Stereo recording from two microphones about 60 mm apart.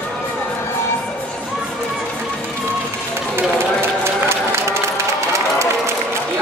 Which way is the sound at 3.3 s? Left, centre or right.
Right.